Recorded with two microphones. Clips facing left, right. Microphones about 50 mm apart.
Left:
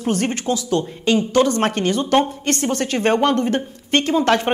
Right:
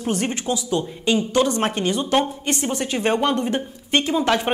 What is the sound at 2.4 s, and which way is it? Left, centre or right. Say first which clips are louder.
Speech: left 3 dB; left.